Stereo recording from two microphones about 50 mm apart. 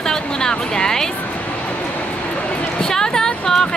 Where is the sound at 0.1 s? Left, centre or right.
Centre.